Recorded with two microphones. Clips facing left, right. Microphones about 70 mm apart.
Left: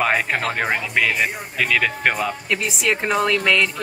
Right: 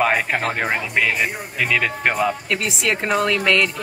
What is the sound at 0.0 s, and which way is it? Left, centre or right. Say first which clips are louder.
Music: right 1 dB; centre.